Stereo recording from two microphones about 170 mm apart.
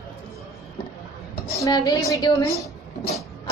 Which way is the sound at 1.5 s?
20° left (ahead or behind).